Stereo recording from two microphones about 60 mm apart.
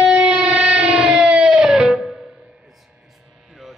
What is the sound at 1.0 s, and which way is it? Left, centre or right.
Music, centre.